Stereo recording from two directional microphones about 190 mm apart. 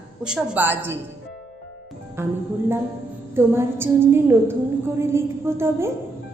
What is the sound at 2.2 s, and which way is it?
A woman's voice, 15° right (ahead or behind).